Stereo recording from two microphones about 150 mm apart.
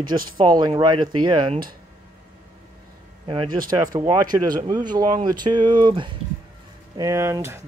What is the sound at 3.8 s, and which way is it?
Speech, 25° right (ahead or behind).